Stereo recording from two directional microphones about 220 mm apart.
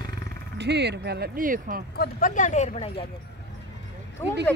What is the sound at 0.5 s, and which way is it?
Speech, 50° right (ahead or behind).